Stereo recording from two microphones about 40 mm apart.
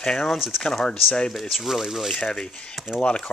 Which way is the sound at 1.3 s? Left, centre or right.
Centre.